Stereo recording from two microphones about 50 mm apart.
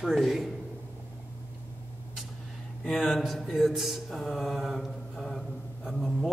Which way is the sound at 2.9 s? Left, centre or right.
Centre.